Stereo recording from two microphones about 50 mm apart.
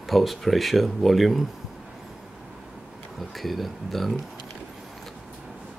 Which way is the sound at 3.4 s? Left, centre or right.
Centre.